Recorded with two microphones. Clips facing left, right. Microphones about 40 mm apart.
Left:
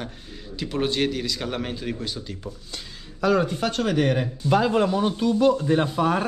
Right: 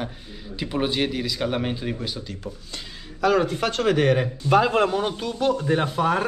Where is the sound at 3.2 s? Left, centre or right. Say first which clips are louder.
Right 1 dB; right.